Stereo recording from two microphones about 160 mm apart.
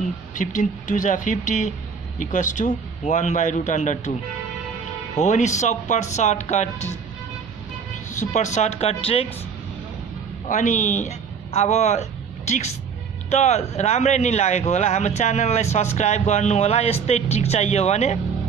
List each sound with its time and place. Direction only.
0.3 s speech: 55° left (ahead or behind)
5.2 s speech: 50° left (ahead or behind)
8.2 s speech: 50° left (ahead or behind)
10.5 s speech: 50° left (ahead or behind)